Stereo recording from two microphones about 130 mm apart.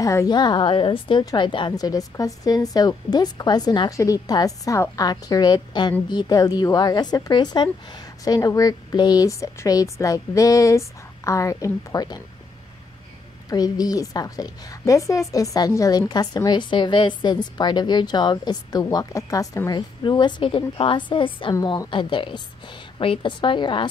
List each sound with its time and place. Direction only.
0.0 s a woman's voice: 25° left (ahead or behind)
1.7 s a woman's voice: 30° left (ahead or behind)
13.5 s a woman's voice: 30° left (ahead or behind)
20.0 s a woman's voice: 35° left (ahead or behind)